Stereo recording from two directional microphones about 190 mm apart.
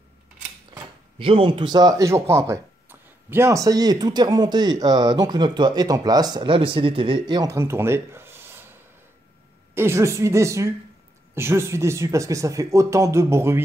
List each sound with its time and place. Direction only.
0.7 s speech: 30° right (ahead or behind); by 8.7 s 10° right (ahead or behind)
9.8 s speech: 15° right (ahead or behind)